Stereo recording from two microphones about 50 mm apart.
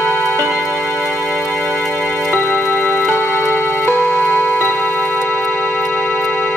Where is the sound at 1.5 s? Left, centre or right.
Left.